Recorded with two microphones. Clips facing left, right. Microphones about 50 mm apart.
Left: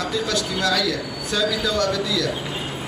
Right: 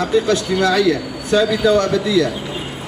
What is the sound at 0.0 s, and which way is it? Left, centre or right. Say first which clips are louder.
A man's voice: right 8 dB; right.